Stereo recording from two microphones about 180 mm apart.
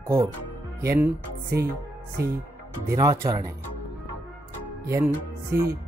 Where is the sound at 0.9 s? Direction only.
10° right (ahead or behind).